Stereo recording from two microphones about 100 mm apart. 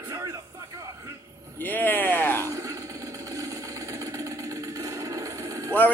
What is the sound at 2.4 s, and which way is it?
Sewing machine, 35° right (ahead or behind).